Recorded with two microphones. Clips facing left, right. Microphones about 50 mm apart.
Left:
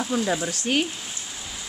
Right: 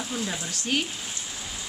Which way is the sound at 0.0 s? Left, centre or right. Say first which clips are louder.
Left 7 dB; left.